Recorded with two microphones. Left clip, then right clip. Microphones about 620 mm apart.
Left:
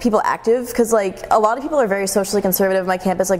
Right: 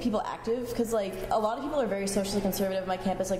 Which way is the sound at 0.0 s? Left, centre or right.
Left.